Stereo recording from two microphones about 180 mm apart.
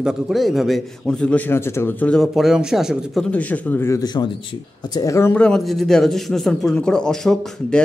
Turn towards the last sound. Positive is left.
turn(degrees=5)  # may be behind; listen again after turning